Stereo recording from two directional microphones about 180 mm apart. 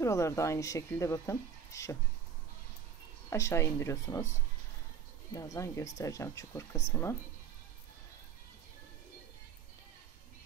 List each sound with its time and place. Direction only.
0.0 s speech: 15° left (ahead or behind)
3.3 s speech: 15° left (ahead or behind)
5.3 s speech: 20° left (ahead or behind)